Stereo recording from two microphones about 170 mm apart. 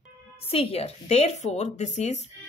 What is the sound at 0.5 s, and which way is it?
Speech, 35° left (ahead or behind).